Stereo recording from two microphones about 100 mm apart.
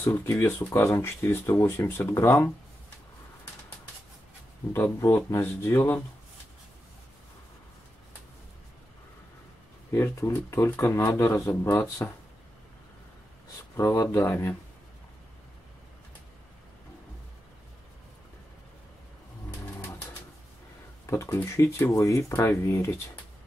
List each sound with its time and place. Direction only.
0.0 s speech: 25° left (ahead or behind)
4.7 s speech: 25° left (ahead or behind)
9.9 s speech: 25° left (ahead or behind)
13.7 s speech: 25° left (ahead or behind)
21.1 s speech: 20° left (ahead or behind)
21.9 s speech: 30° left (ahead or behind)